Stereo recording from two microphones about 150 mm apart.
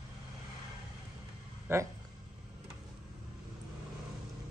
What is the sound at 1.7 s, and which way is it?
Speech, 15° right (ahead or behind).